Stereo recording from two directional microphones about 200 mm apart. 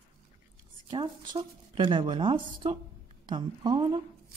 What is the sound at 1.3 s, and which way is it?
Speech, 25° right (ahead or behind).